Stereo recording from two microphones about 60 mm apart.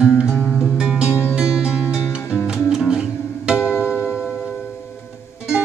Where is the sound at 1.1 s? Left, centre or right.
Left.